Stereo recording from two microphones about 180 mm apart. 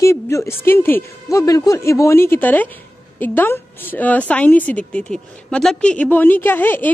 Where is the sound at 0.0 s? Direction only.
15° left (ahead or behind).